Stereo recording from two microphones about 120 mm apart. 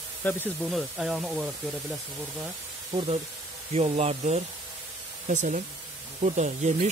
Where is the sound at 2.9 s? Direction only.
55° right (ahead or behind).